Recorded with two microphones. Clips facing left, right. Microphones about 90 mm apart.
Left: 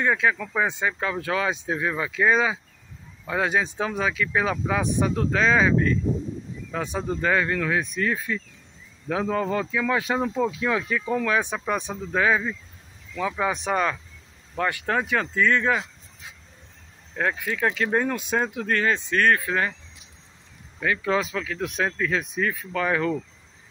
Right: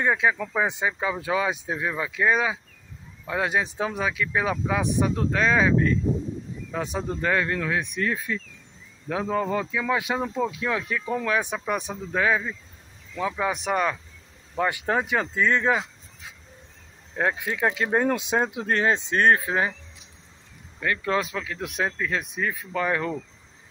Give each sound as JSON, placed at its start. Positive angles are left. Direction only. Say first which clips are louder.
{"t": 0.0, "sound": "speech", "louder": "even", "side_deg": -15}
{"t": 14.7, "sound": "speech", "louder": "left 1 dB", "side_deg": -15}
{"t": 17.1, "sound": "speech", "louder": "even", "side_deg": -20}
{"t": 20.8, "sound": "speech", "louder": "left 1 dB", "side_deg": 5}